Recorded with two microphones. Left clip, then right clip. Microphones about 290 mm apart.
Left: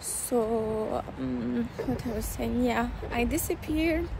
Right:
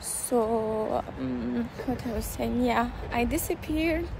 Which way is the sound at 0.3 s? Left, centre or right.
Centre.